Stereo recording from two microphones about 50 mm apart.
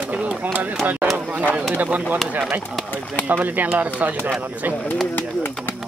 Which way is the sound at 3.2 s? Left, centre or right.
Right.